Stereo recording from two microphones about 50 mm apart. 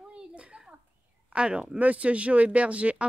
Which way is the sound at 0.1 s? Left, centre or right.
Right.